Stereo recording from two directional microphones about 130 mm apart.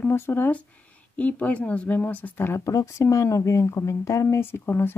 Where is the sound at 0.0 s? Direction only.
20° left (ahead or behind).